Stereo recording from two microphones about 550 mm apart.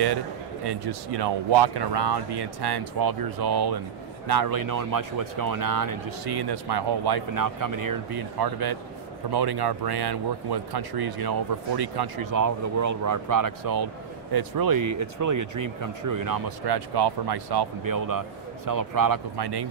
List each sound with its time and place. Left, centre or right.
0.7 s speech: right